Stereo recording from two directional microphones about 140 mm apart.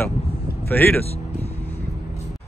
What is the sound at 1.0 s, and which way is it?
Vehicle, 50° left (ahead or behind).